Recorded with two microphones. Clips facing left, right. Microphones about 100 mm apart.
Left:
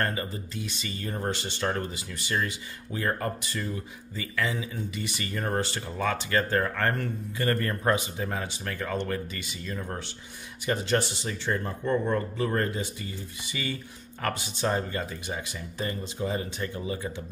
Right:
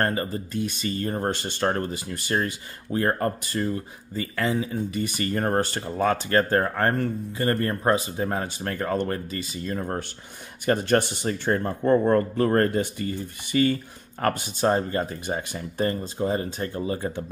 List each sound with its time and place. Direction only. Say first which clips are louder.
0.0 s speech: right 5 dB; 40° right (ahead or behind)